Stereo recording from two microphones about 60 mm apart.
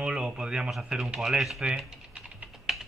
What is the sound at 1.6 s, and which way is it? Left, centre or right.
Typing, centre.